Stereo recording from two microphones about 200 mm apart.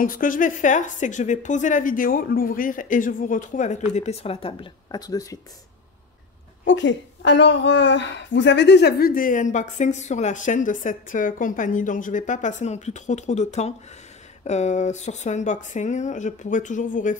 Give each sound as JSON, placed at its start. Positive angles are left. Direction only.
{"t": 0.0, "sound": "a woman's voice", "side_deg": 45}
{"t": 6.6, "sound": "a woman's voice", "side_deg": 65}